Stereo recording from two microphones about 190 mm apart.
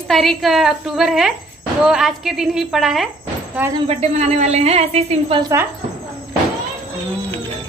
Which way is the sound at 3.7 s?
35° right (ahead or behind).